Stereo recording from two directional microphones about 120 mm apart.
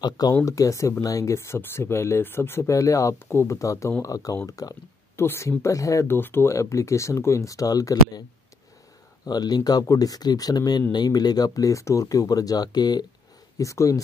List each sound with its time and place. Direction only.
0.0 s speech: 35° left (ahead or behind)
9.2 s speech: 35° left (ahead or behind)